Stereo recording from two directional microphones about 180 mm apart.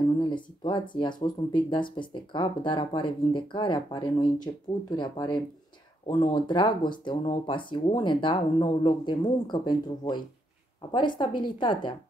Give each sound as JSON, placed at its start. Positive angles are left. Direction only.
{"t": 0.2, "sound": "speech", "side_deg": 25}